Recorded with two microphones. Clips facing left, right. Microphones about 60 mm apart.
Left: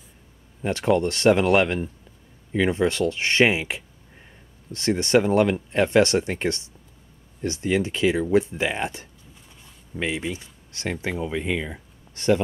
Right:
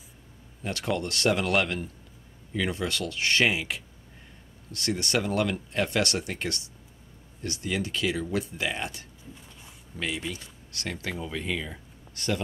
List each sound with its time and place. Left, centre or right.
0.6 s speech: left